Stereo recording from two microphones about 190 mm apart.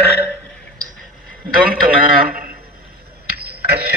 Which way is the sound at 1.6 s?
50° right (ahead or behind).